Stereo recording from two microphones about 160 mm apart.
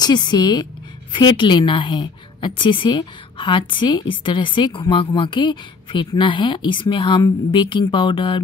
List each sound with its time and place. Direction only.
0.0 s a woman's voice: 25° left (ahead or behind)